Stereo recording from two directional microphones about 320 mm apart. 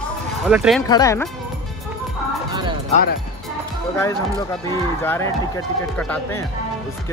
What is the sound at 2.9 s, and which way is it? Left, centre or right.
Speech, left.